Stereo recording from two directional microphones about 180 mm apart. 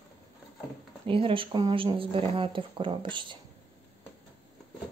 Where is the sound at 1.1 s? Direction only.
30° right (ahead or behind).